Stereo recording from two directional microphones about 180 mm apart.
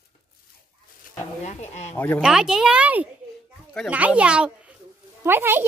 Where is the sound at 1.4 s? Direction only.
40° left (ahead or behind).